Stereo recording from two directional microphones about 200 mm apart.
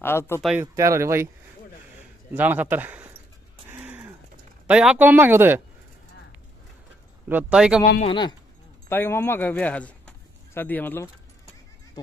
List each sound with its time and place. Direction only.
0.0 s speech: 10° left (ahead or behind)
0.4 s speech: 5° right (ahead or behind)
0.7 s speech: 15° right (ahead or behind)
2.3 s speech: 10° right (ahead or behind)
3.7 s a sound: 10° right (ahead or behind)
4.6 s speech: 5° right (ahead or behind)
7.2 s speech: 10° right (ahead or behind)
8.0 s speech: 25° left (ahead or behind)
8.8 s speech: 10° left (ahead or behind)